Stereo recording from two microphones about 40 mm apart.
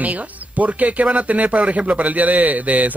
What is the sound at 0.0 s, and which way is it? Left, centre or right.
Speech, right.